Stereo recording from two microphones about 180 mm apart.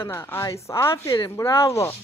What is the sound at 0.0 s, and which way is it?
Speech, 15° left (ahead or behind).